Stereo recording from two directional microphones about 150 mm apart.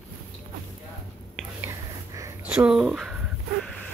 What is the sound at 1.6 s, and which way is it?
Whispering, 20° right (ahead or behind).